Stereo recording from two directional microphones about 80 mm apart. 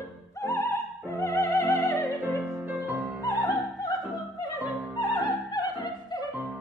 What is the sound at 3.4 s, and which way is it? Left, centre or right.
Opera, left.